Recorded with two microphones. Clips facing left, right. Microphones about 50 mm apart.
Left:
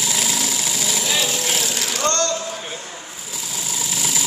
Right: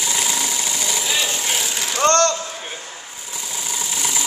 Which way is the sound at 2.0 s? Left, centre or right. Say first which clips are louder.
Right 6 dB; right.